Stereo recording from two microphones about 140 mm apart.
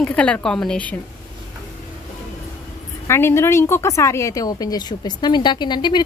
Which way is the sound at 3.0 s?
20° left (ahead or behind).